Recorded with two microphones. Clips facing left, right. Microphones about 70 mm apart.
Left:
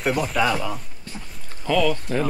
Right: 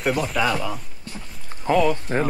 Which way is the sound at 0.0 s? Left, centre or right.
Centre.